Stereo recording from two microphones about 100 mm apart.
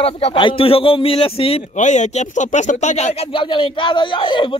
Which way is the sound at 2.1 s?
90° left.